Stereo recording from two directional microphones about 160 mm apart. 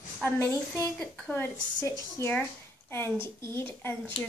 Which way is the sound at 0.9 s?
5° left (ahead or behind).